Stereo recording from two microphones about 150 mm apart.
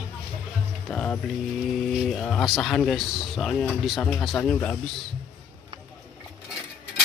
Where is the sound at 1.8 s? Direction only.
Centre (ahead or behind).